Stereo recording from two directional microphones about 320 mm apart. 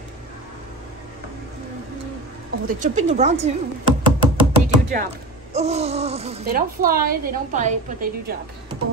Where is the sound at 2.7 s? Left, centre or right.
Right.